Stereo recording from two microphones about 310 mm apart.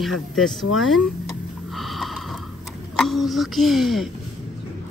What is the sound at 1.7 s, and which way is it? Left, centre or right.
Snort, centre.